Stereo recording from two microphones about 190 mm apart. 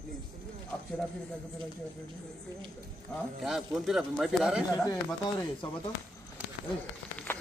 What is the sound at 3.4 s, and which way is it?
Speech, centre (ahead or behind).